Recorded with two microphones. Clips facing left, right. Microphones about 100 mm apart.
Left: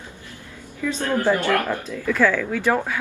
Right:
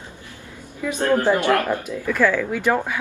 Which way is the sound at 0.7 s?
15° right (ahead or behind).